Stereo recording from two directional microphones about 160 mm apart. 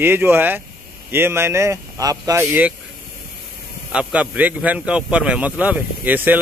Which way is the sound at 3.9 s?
10° right (ahead or behind).